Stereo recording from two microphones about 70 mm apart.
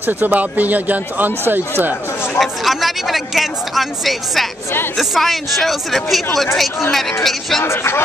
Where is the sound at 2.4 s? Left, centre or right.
Centre.